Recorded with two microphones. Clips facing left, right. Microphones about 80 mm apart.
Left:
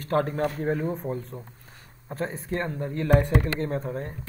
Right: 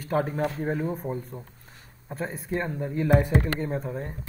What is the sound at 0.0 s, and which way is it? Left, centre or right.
Speech, centre.